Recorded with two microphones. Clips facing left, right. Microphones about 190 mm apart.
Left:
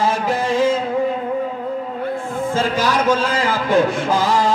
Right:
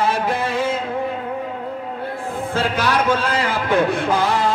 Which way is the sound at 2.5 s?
60° right (ahead or behind).